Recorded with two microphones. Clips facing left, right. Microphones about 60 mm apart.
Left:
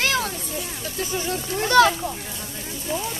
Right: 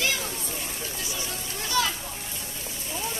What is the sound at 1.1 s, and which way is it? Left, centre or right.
Speech, left.